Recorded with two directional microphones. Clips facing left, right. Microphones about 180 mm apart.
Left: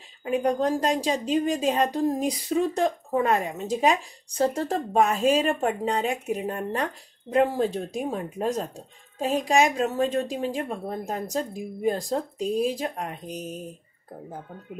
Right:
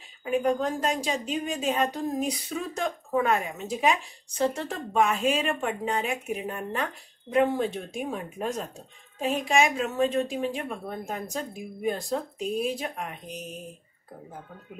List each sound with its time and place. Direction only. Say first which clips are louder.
0.2 s speech: left 2 dB; 35° left (ahead or behind)